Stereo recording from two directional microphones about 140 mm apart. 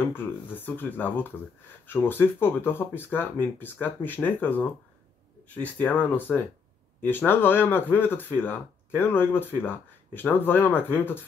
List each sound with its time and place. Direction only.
0.1 s speech: 15° left (ahead or behind)